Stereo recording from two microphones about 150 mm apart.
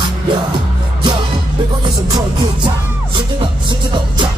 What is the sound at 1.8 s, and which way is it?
Music, 30° right (ahead or behind).